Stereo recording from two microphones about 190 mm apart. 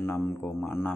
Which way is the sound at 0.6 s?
10° left (ahead or behind).